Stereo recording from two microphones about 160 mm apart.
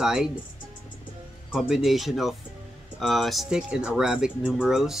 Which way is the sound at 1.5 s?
5° right (ahead or behind).